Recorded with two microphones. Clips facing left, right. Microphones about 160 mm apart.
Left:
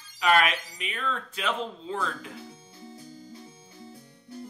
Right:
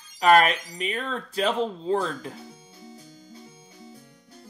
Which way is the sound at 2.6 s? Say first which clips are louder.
Left 1 dB; 10° right (ahead or behind).